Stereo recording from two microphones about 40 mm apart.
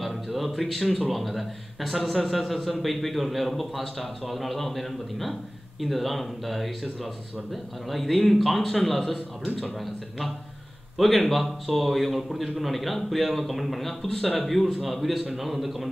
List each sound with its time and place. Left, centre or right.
0.0 s a man's voice: centre
7.9 s a man's voice: centre